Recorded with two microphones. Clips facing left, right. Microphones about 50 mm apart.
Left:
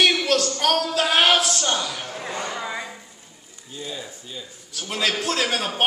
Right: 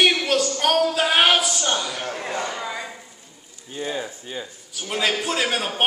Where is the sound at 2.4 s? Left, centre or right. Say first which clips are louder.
Even; centre.